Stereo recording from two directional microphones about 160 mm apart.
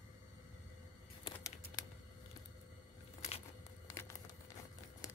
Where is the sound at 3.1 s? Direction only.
40° left (ahead or behind).